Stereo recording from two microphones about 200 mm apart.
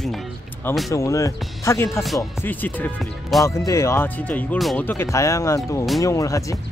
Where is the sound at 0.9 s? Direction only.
15° left (ahead or behind).